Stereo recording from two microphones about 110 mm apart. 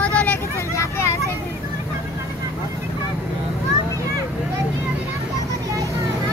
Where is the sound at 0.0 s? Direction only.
10° left (ahead or behind).